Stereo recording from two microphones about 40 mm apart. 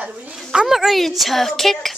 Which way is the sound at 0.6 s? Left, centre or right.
Centre.